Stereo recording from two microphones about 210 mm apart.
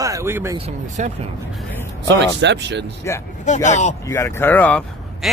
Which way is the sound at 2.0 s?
55° right (ahead or behind).